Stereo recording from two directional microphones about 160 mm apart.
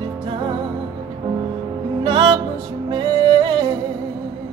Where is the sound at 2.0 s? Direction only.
35° right (ahead or behind).